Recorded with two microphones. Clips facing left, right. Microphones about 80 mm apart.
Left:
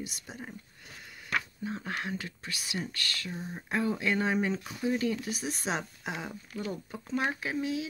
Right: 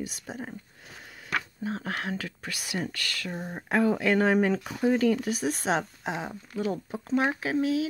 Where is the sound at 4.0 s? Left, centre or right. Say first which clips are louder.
Right 6 dB; right.